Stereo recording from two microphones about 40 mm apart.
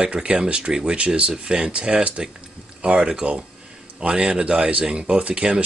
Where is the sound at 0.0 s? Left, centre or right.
Right.